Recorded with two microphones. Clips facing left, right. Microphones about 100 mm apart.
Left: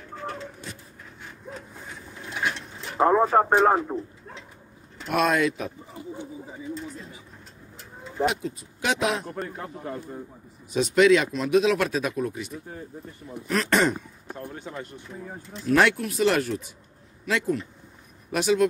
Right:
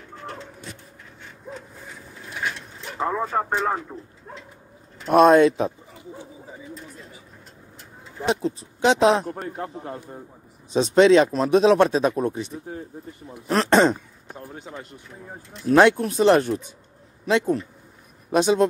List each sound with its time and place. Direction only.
3.0 s speech: 50° left (ahead or behind)
5.0 s speech: 35° right (ahead or behind)
8.3 s speech: 30° right (ahead or behind)
10.7 s speech: 25° right (ahead or behind)
14.4 s speech: 5° right (ahead or behind)
15.7 s speech: 25° right (ahead or behind)